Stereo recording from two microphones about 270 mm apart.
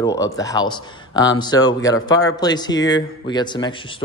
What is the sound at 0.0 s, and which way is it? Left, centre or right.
Speech, centre.